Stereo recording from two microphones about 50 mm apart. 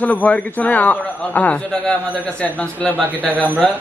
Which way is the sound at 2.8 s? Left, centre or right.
Right.